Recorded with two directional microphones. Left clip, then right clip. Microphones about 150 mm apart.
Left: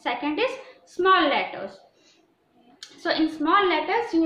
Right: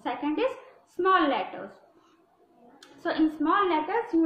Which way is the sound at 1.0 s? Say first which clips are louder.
Left 4 dB; 20° right (ahead or behind).